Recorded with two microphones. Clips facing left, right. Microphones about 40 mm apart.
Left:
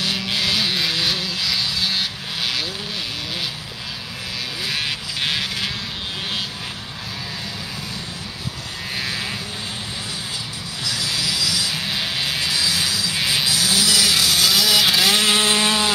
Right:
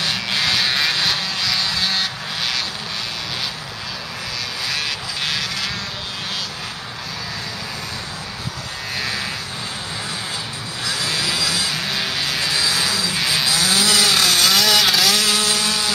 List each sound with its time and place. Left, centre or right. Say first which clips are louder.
0.1 s a sound: right 1 dB; centre
0.6 s vehicle: right 2 dB; centre
4.6 s a sound: even; centre
8.9 s vehicle: right 1 dB; centre
10.9 s vehicle: right 2 dB; right
11.7 s music: right 1 dB; centre
12.5 s vehicle: right 2 dB; right
13.1 s livestock: right 1 dB; centre
13.5 s a sound: right 3 dB; right
14.4 s vehicle: right 1 dB; centre
15.0 s chainsaw: left 1 dB; left